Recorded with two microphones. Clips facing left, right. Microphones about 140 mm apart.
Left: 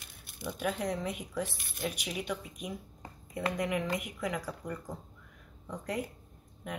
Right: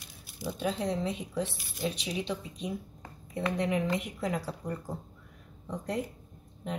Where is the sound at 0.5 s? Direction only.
25° right (ahead or behind).